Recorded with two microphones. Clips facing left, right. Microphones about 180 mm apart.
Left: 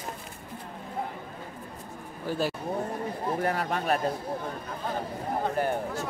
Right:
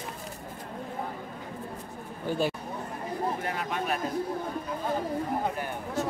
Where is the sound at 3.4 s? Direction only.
40° left (ahead or behind).